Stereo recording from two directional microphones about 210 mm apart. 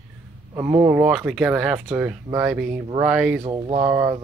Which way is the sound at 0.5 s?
15° right (ahead or behind).